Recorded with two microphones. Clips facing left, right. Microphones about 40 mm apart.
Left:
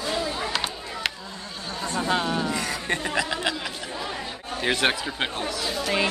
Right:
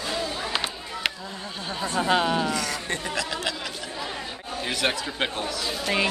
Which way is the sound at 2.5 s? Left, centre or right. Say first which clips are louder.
Left 1 dB; left.